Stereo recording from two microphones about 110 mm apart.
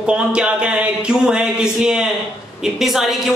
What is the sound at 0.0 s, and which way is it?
A woman's voice, 10° right (ahead or behind).